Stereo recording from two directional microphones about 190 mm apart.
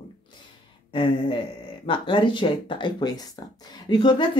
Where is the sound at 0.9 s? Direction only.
25° left (ahead or behind).